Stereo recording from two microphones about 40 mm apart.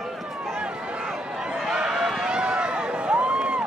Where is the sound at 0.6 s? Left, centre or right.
Right.